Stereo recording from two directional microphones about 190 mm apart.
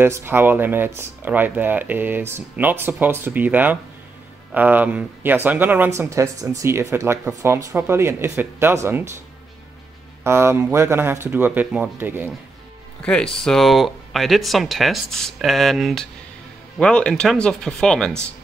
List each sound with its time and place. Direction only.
0.0 s speech: 10° right (ahead or behind)
10.2 s speech: 15° right (ahead or behind)
13.0 s speech: 5° left (ahead or behind)